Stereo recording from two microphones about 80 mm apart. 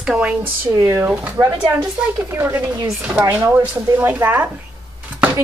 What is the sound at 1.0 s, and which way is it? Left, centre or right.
Speech, right.